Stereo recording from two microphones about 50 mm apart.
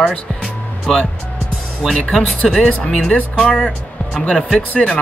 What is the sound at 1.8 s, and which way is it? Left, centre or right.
Speech, centre.